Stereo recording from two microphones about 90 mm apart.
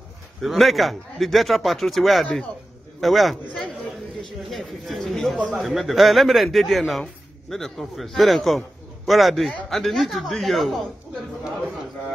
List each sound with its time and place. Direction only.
0.4 s speech: centre (ahead or behind)